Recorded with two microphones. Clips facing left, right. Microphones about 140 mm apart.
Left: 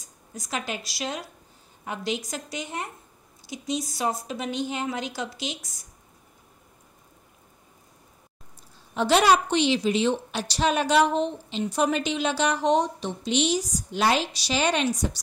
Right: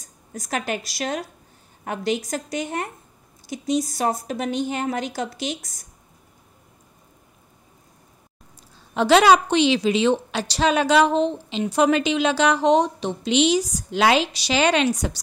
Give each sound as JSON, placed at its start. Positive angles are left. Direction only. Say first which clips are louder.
{"t": 0.3, "sound": "a woman's voice", "louder": "right 5 dB", "side_deg": -55}
{"t": 8.9, "sound": "a woman's voice", "louder": "right 5 dB", "side_deg": -90}